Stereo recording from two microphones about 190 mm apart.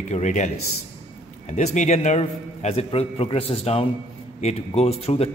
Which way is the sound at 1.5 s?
40° left (ahead or behind).